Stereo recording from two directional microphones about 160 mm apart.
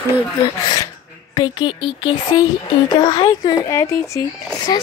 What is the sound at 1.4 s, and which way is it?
Speech, 30° left (ahead or behind).